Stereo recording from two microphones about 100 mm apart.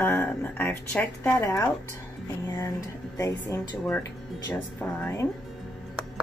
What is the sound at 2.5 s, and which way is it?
Speech, 30° left (ahead or behind).